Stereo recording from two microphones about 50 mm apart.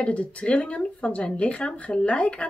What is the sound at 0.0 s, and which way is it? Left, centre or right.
A woman's voice, left.